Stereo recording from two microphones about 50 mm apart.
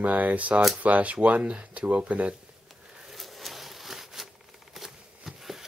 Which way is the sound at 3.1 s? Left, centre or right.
Centre.